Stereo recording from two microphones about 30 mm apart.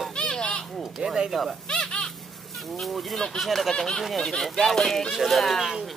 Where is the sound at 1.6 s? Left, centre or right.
Left.